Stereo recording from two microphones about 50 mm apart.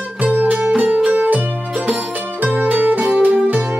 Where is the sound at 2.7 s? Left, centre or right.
Right.